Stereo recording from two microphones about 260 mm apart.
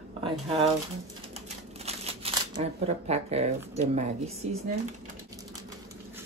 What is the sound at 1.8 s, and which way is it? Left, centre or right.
Shuffling cards, right.